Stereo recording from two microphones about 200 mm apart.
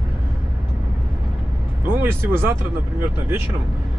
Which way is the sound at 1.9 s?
10° right (ahead or behind).